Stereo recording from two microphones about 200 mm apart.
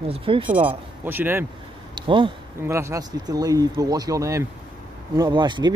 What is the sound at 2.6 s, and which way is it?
Speech, 15° right (ahead or behind).